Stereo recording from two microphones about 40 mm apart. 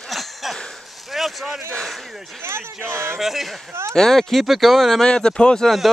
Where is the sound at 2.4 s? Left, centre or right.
Right.